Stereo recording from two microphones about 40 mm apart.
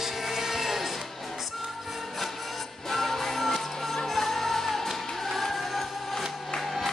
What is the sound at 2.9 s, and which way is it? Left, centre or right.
Music, centre.